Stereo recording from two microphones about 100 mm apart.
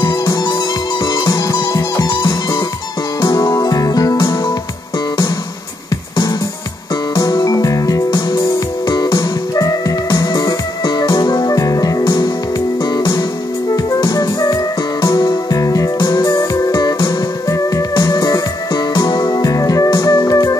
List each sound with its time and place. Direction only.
0.0 s music: 45° left (ahead or behind)
7.2 s music: 40° left (ahead or behind)